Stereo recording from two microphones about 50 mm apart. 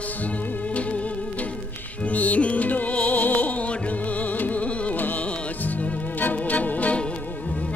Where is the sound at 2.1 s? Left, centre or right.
Left.